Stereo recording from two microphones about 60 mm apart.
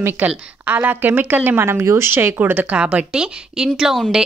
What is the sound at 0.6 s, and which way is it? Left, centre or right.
A woman's voice, right.